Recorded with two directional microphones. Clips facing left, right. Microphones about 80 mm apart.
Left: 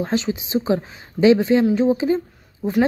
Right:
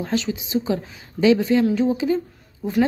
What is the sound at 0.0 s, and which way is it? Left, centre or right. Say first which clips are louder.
Speech: left 2 dB; left.